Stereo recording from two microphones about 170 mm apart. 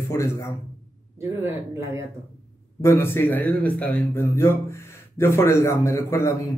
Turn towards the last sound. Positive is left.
turn(degrees=15)  # may be behind; listen again after turning